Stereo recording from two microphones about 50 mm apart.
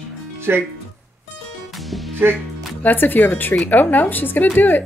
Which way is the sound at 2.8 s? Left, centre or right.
Left.